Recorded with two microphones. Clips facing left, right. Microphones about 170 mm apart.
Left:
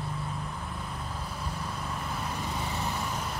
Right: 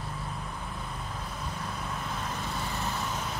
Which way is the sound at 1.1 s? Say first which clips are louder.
Left 1 dB; 10° left (ahead or behind).